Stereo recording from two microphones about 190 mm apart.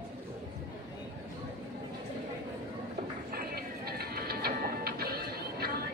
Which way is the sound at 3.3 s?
55° right (ahead or behind).